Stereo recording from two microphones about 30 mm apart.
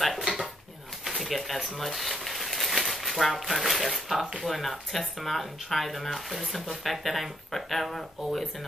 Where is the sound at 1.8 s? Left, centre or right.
Centre.